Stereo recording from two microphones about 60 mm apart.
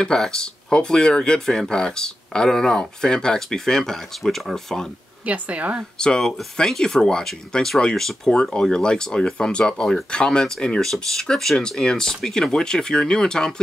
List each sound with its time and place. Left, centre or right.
0.0 s speech: centre
5.2 s speech: right
5.9 s speech: centre